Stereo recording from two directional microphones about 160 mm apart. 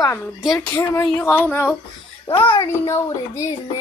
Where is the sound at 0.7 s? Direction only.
20° left (ahead or behind).